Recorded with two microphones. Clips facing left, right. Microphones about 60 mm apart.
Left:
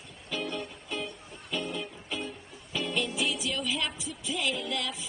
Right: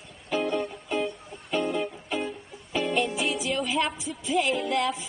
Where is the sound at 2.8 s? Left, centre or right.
Right.